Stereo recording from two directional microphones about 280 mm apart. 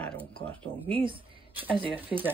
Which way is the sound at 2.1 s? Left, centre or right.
Centre.